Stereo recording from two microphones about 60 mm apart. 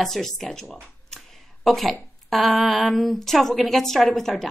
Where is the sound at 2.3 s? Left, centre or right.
Centre.